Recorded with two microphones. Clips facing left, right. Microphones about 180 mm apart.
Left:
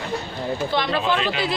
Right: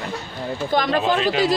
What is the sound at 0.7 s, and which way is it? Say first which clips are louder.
Speech: right 4 dB; 40° right (ahead or behind).